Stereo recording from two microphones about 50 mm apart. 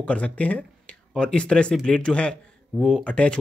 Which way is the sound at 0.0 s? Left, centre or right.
Left.